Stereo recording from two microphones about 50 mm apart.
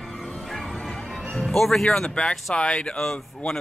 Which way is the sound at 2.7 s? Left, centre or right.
Centre.